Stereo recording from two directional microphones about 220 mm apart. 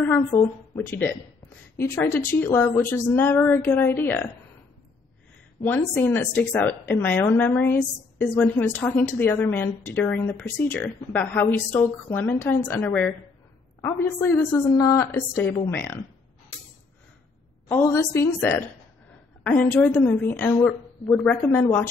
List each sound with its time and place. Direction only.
0.0 s a woman's voice: 10° left (ahead or behind)
5.6 s a woman's voice: 10° left (ahead or behind)
17.6 s a woman's voice: 10° left (ahead or behind)